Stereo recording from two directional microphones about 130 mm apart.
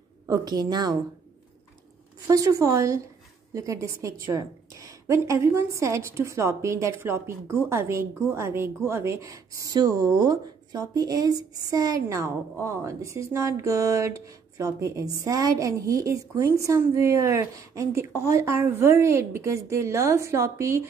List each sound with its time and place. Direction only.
0.3 s a woman's voice: 30° right (ahead or behind)
2.2 s a woman's voice: 25° right (ahead or behind)